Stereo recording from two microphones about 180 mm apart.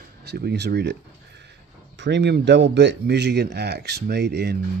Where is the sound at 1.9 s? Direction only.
75° right (ahead or behind).